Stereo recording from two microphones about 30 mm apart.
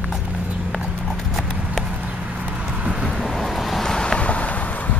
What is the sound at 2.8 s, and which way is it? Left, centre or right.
Vehicle, right.